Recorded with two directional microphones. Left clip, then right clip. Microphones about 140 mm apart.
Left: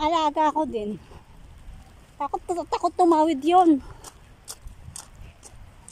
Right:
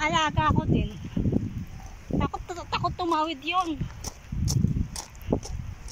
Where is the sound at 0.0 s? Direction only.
40° left (ahead or behind).